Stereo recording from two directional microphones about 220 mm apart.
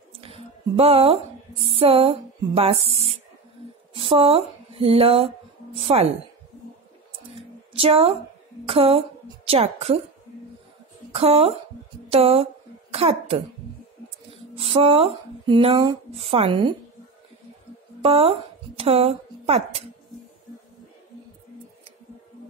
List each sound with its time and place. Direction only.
0.1 s a woman's voice: 25° right (ahead or behind)
3.9 s speech: 25° right (ahead or behind)
7.3 s a sound: 25° right (ahead or behind)
8.6 s a woman's voice: 25° right (ahead or behind)
11.1 s speech: 25° right (ahead or behind)
18.0 s a woman's voice: 25° right (ahead or behind)